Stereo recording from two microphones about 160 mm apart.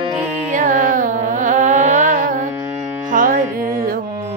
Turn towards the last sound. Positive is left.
turn(degrees=-60)  # may be behind; listen again after turning